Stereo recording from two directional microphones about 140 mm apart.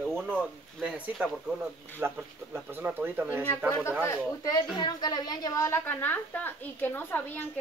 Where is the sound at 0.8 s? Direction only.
10° right (ahead or behind).